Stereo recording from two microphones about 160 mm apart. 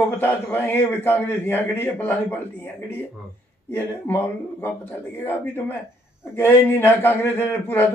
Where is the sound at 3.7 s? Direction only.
15° left (ahead or behind).